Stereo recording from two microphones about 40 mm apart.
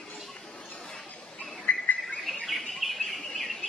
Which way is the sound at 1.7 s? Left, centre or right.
Left.